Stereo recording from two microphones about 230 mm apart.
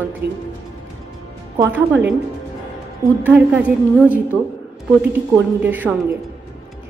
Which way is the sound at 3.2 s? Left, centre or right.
Centre.